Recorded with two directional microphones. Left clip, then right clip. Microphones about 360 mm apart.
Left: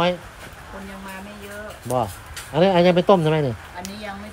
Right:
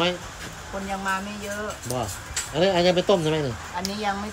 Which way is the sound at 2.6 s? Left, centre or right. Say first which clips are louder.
Left 4 dB; centre.